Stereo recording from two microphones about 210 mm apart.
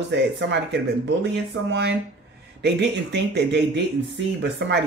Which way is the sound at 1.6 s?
55° right (ahead or behind).